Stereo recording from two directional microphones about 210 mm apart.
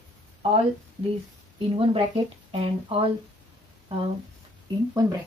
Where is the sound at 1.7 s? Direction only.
25° right (ahead or behind).